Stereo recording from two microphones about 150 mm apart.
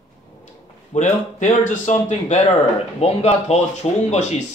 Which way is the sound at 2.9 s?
45° left (ahead or behind).